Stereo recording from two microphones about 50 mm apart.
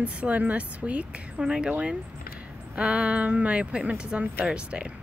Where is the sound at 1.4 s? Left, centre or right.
Centre.